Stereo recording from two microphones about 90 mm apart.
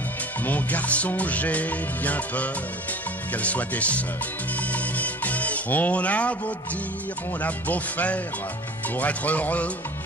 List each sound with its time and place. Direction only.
0.5 s music: 20° left (ahead or behind)